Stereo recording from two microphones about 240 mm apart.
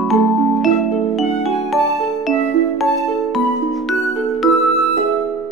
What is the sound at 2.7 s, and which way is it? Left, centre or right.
Music, centre.